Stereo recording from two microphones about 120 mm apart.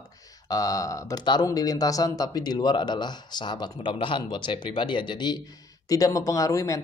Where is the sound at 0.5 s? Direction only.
30° left (ahead or behind).